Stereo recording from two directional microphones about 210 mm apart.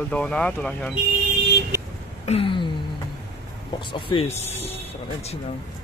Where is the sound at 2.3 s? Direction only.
25° left (ahead or behind).